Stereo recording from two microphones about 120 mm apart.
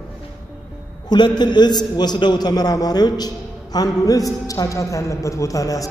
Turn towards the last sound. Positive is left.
turn(degrees=30)  # may be behind; listen again after turning